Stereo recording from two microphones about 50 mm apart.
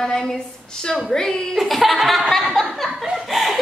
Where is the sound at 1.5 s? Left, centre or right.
Centre.